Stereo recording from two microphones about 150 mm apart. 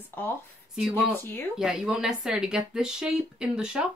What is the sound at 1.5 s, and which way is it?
Speech, 5° right (ahead or behind).